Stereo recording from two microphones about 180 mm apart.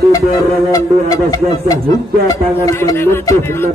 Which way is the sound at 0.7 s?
20° left (ahead or behind).